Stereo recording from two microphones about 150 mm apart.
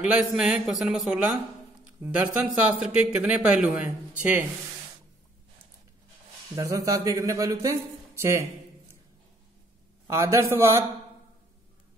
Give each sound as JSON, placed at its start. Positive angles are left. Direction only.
{"t": 0.0, "sound": "a man's voice", "side_deg": -5}
{"t": 6.5, "sound": "a man's voice", "side_deg": -20}
{"t": 10.0, "sound": "a man's voice", "side_deg": -20}